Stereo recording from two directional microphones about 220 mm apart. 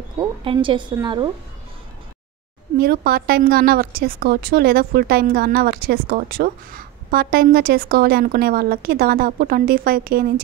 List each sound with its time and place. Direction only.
0.4 s a woman's voice: 20° right (ahead or behind)
2.8 s a woman's voice: 45° right (ahead or behind)